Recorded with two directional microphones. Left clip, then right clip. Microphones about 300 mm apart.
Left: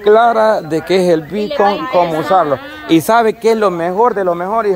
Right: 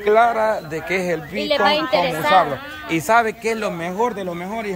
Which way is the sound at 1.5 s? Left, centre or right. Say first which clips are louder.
Left 2 dB; right.